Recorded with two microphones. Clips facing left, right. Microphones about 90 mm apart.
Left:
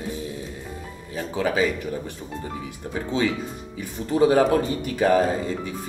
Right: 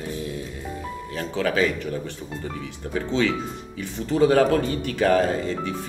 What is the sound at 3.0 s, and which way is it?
Speech, 20° left (ahead or behind).